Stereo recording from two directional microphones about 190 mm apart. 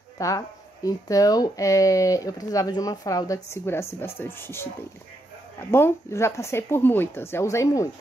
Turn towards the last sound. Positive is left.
turn(degrees=15)  # may be behind; listen again after turning